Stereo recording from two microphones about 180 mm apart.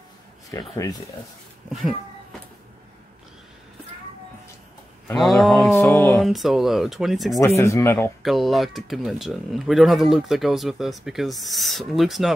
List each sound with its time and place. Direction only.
0.5 s speech: 20° left (ahead or behind)
1.7 s speech: centre (ahead or behind)
5.2 s speech: centre (ahead or behind)
5.8 s speech: 10° left (ahead or behind)
6.2 s speech: centre (ahead or behind)
7.3 s speech: 15° left (ahead or behind)
8.2 s speech: centre (ahead or behind)